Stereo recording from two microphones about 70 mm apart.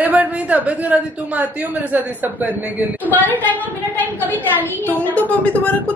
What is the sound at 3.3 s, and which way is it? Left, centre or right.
A woman's voice, left.